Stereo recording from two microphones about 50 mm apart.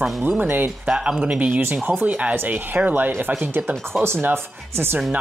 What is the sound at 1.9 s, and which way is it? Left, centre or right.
Speech, right.